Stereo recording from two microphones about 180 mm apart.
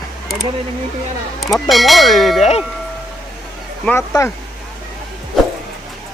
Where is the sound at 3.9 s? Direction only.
15° left (ahead or behind).